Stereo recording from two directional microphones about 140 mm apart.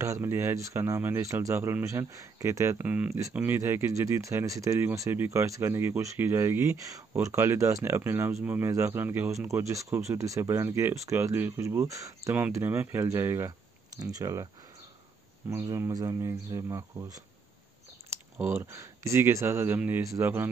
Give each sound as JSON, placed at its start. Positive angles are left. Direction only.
{"t": 0.0, "sound": "speech", "side_deg": -20}
{"t": 15.5, "sound": "speech", "side_deg": -20}